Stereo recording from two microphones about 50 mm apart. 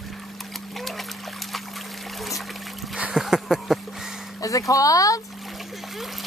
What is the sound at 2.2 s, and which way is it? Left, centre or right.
Music, centre.